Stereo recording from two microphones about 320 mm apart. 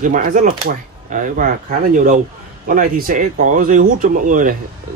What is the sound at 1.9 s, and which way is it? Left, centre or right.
Speech, right.